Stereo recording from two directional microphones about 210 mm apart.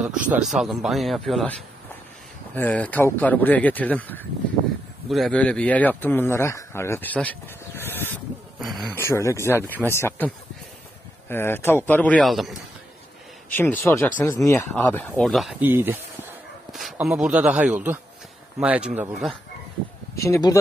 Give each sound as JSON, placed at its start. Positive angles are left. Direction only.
{"t": 0.3, "sound": "speech", "side_deg": 0}
{"t": 2.5, "sound": "a man's voice", "side_deg": 10}
{"t": 8.5, "sound": "speech", "side_deg": 0}
{"t": 8.9, "sound": "a man's voice", "side_deg": 15}
{"t": 13.6, "sound": "a man's voice", "side_deg": 10}
{"t": 15.6, "sound": "speech", "side_deg": -10}
{"t": 20.2, "sound": "a man's voice", "side_deg": 15}